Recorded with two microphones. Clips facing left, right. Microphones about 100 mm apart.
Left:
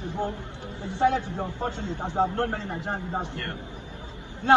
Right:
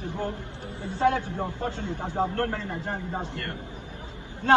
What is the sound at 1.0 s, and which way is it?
Speech, 20° left (ahead or behind).